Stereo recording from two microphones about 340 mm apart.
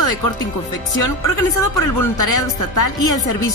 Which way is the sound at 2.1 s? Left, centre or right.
Left.